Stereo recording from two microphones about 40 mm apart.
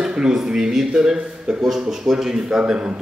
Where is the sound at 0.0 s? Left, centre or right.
Right.